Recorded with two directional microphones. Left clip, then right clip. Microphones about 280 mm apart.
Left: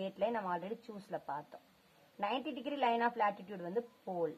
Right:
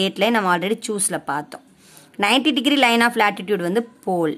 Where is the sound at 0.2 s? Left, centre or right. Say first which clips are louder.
Right 17 dB; right.